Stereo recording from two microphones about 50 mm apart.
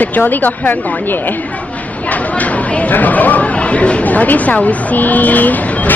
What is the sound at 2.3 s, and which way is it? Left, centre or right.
Speech, left.